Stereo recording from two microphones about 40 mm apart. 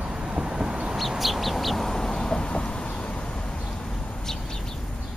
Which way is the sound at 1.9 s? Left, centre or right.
Centre.